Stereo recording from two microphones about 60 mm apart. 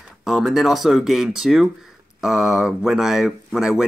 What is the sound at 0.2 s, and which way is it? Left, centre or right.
Speech, centre.